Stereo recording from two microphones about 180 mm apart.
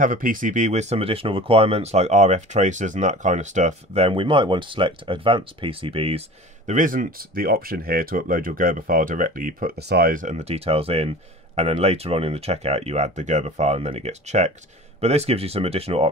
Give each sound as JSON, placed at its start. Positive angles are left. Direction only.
{"t": 0.0, "sound": "speech", "side_deg": -50}
{"t": 6.7, "sound": "speech", "side_deg": -45}